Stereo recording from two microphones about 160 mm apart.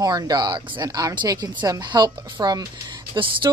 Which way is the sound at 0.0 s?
25° right (ahead or behind).